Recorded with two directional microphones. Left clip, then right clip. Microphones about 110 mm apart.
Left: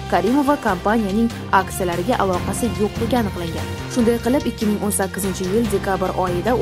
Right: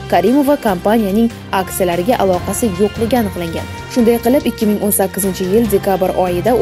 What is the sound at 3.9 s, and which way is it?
Speech, 20° right (ahead or behind).